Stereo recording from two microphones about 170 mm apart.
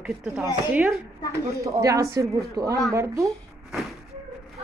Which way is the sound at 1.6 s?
20° right (ahead or behind).